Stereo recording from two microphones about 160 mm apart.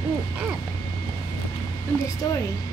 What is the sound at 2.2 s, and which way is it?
Speech, 25° left (ahead or behind).